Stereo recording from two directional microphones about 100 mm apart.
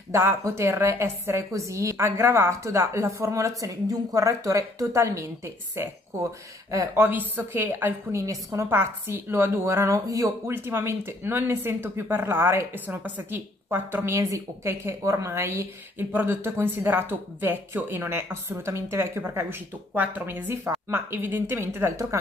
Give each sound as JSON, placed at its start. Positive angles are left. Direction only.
{"t": 0.1, "sound": "a woman's voice", "side_deg": -25}